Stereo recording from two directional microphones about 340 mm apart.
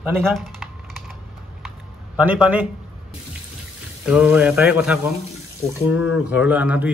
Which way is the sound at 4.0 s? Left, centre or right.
Centre.